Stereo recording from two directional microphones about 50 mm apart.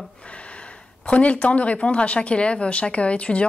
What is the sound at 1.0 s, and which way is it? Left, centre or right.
A woman's voice, left.